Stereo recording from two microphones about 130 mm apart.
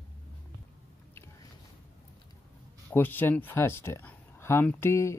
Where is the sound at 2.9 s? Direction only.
15° left (ahead or behind).